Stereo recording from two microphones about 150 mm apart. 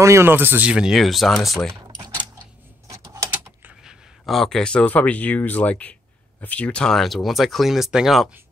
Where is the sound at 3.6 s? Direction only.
5° right (ahead or behind).